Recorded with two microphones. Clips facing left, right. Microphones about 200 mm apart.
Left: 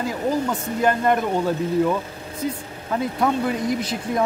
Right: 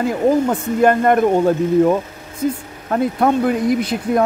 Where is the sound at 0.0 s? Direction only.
55° right (ahead or behind).